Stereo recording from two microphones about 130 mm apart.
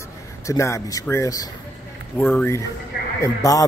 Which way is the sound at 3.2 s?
25° left (ahead or behind).